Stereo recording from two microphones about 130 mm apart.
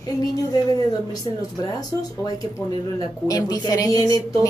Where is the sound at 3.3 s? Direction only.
30° left (ahead or behind).